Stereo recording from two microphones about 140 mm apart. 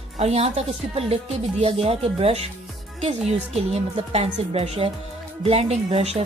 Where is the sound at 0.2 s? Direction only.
50° right (ahead or behind).